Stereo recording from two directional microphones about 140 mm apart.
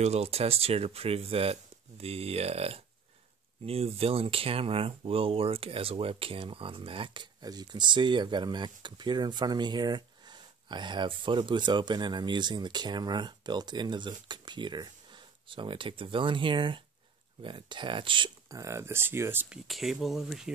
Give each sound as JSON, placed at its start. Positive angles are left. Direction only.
{"t": 0.0, "sound": "speech", "side_deg": -45}
{"t": 18.6, "sound": "speech", "side_deg": -20}
{"t": 19.5, "sound": "speech", "side_deg": 0}